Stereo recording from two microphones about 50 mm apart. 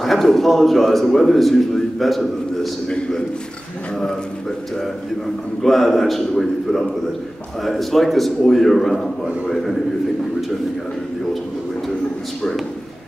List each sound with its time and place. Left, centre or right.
0.0 s a man's voice: centre
2.9 s a man's voice: centre
5.6 s a man's voice: centre